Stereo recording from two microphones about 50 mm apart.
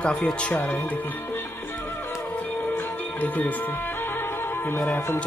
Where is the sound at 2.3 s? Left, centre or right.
Left.